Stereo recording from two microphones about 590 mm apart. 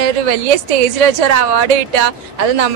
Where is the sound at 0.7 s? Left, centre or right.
Right.